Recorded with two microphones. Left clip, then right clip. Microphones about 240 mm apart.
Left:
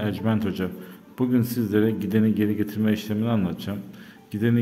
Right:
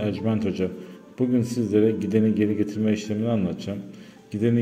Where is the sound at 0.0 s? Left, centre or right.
Centre.